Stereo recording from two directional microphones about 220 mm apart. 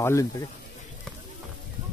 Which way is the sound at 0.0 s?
15° left (ahead or behind).